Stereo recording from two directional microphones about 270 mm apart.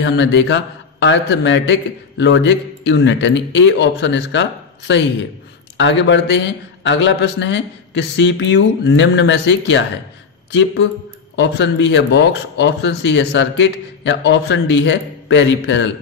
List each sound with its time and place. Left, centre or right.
0.0 s a man's voice: left
11.3 s a man's voice: left